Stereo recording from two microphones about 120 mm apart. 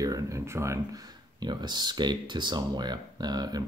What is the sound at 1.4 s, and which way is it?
Speech, 35° right (ahead or behind).